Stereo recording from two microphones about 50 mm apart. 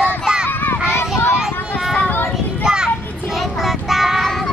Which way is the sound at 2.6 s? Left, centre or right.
Centre.